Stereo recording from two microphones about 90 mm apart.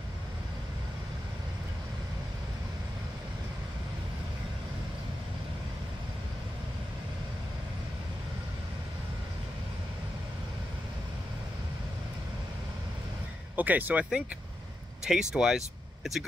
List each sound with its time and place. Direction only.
13.6 s speech: 20° right (ahead or behind)
15.0 s speech: 5° right (ahead or behind)